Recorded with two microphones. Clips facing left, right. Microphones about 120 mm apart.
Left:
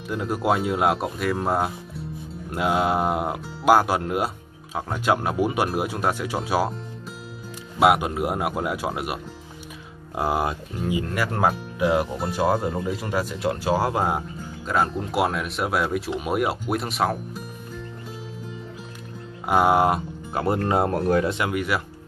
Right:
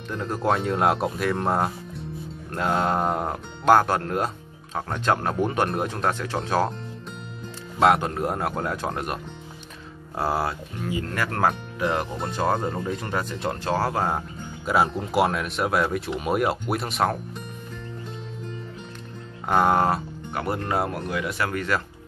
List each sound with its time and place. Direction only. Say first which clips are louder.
0.1 s speech: left 1 dB; 10° left (ahead or behind)
14.6 s speech: right 1 dB; 5° right (ahead or behind)
19.4 s speech: left 2 dB; 10° left (ahead or behind)
20.6 s speech: left 5 dB; 25° left (ahead or behind)